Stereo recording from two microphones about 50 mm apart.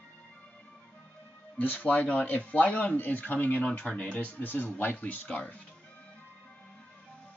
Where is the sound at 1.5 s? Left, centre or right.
Left.